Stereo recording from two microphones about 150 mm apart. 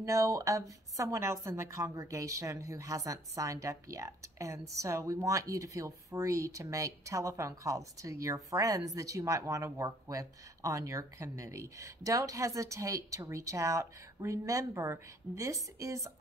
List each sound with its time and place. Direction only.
0.0 s a woman's voice: 20° right (ahead or behind)